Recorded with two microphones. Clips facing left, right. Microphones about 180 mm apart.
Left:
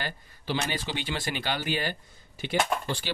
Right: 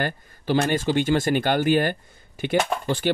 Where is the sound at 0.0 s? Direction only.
50° right (ahead or behind).